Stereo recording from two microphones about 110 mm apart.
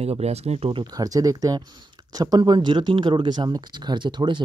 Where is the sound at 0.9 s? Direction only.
35° right (ahead or behind).